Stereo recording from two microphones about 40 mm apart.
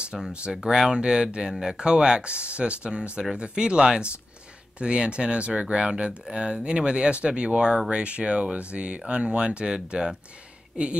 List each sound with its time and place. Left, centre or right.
0.5 s speech: centre